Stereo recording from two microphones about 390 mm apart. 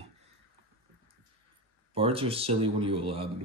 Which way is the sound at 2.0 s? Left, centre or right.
Centre.